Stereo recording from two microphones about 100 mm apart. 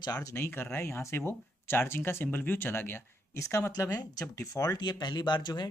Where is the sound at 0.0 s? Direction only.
40° left (ahead or behind).